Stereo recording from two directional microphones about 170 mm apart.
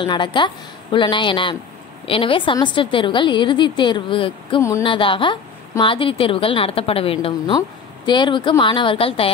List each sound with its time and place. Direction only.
0.0 s a woman's voice: 30° left (ahead or behind)
4.6 s speech: 15° left (ahead or behind)
4.8 s a woman's voice: 30° left (ahead or behind)